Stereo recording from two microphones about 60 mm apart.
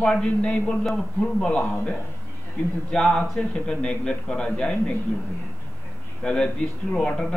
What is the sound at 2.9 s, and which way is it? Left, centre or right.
A man's voice, centre.